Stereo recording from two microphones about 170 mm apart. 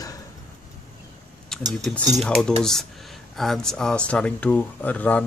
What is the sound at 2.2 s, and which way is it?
Speech, 5° left (ahead or behind).